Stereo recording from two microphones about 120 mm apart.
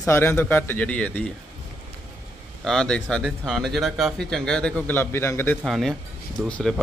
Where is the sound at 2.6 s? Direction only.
5° left (ahead or behind).